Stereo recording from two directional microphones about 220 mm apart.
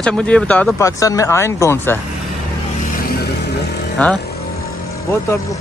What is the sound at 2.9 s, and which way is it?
Vehicle, 40° left (ahead or behind).